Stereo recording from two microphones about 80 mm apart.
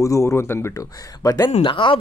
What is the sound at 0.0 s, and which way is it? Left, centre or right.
Speech, left.